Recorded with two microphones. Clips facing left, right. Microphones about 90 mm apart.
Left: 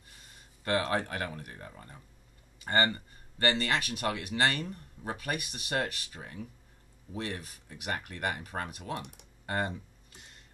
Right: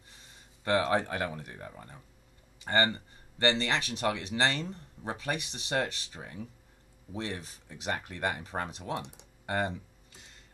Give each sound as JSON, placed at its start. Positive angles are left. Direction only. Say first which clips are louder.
{"t": 0.7, "sound": "speech", "louder": "right 3 dB", "side_deg": -25}